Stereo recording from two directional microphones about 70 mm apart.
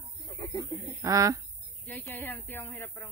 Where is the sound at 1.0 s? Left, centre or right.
Right.